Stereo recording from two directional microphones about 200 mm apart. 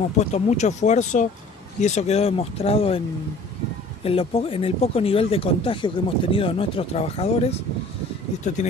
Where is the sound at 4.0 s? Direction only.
30° left (ahead or behind).